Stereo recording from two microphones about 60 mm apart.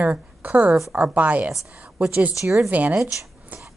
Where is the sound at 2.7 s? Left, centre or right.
Right.